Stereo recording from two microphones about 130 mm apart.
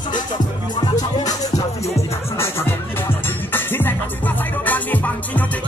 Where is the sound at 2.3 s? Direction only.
20° left (ahead or behind).